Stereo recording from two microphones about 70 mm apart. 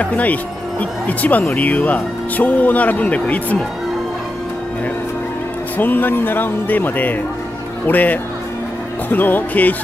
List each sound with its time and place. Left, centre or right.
0.0 s speech: left
5.8 s speech: left